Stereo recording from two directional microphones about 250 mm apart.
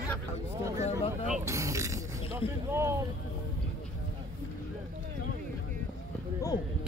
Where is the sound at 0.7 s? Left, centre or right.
Left.